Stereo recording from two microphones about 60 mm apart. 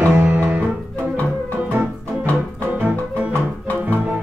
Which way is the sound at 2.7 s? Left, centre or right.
Right.